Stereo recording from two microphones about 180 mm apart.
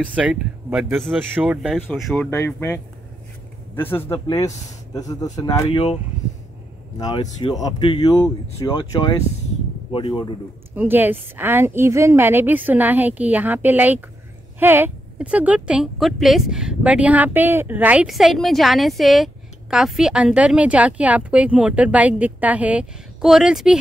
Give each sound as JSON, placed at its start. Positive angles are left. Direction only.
{"t": 0.0, "sound": "a woman's voice", "side_deg": -5}
{"t": 2.3, "sound": "speech", "side_deg": 10}
{"t": 7.0, "sound": "speech", "side_deg": 25}
{"t": 10.7, "sound": "a woman's voice", "side_deg": -10}